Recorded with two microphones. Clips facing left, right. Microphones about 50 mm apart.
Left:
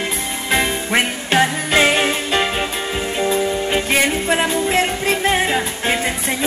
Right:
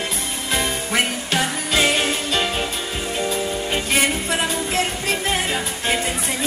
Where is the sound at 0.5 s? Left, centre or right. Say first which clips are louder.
Left 5 dB; left.